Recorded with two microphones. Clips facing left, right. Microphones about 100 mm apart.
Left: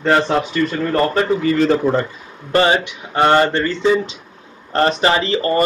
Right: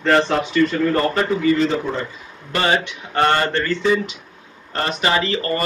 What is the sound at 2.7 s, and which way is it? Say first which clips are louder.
Speech: left 2 dB; 15° left (ahead or behind).